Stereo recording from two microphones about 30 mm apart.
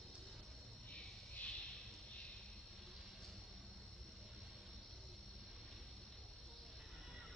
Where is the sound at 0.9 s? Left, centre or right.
Left.